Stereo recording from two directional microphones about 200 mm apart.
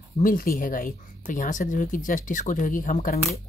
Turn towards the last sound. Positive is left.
turn(degrees=40)  # may be behind; listen again after turning